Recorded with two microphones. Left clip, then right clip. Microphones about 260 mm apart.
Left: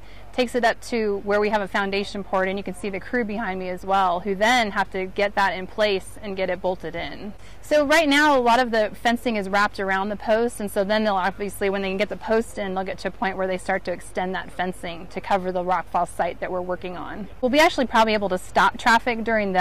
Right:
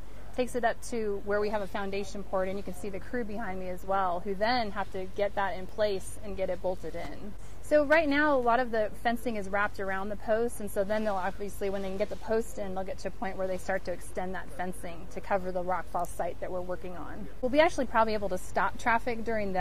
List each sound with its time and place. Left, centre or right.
0.4 s a woman's voice: left